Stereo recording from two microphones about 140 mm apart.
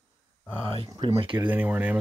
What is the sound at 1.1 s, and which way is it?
Speech, 40° right (ahead or behind).